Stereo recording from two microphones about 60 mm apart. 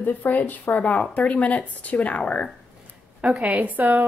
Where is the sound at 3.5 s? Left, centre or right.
Right.